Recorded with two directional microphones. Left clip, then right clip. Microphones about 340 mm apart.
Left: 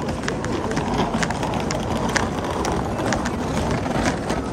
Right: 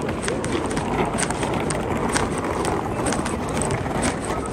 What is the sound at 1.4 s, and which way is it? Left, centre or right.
Vehicle, left.